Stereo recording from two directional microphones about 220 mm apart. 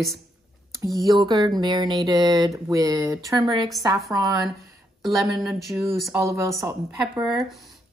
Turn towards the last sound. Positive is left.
turn(degrees=-15)  # may be behind; listen again after turning